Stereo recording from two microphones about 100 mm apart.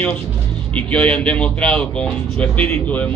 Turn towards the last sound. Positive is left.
turn(degrees=15)  # may be behind; listen again after turning